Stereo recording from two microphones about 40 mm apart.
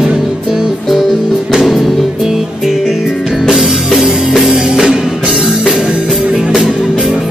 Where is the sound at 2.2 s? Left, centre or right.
Centre.